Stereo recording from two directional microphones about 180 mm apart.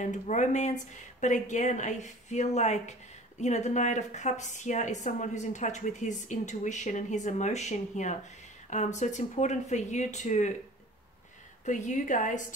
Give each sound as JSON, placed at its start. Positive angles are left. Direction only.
{"t": 0.0, "sound": "speech", "side_deg": 40}
{"t": 11.6, "sound": "a woman's voice", "side_deg": 45}